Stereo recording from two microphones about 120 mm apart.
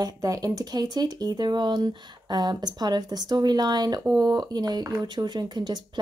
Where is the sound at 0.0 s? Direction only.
30° right (ahead or behind).